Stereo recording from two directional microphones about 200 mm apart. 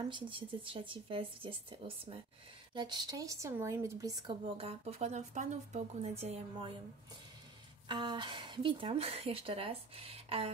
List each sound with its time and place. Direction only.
0.1 s a woman's voice: 25° right (ahead or behind)
7.9 s a woman's voice: 25° right (ahead or behind)